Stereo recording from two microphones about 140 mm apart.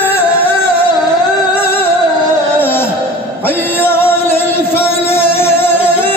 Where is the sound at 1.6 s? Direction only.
15° left (ahead or behind).